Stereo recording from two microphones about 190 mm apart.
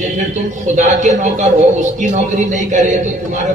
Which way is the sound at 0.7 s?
40° right (ahead or behind).